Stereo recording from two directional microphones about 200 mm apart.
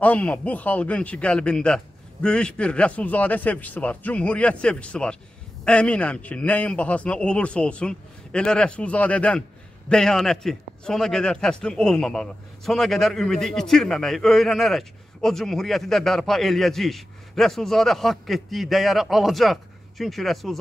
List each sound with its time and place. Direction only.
0.0 s a man's voice: 5° left (ahead or behind)